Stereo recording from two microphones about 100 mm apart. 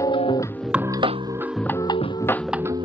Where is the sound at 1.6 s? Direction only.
15° left (ahead or behind).